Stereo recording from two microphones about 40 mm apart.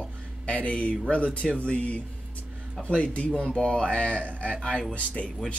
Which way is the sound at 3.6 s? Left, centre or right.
Left.